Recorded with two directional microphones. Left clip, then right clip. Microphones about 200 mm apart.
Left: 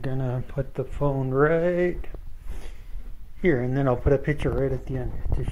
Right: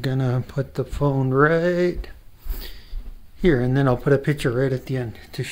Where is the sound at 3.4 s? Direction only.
25° right (ahead or behind).